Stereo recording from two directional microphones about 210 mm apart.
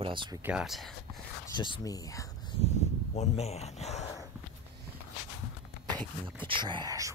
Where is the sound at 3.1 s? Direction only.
30° left (ahead or behind).